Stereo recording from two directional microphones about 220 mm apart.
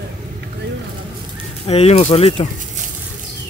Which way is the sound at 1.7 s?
25° left (ahead or behind).